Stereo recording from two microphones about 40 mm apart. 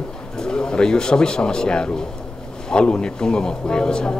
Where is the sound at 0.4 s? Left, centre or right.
Centre.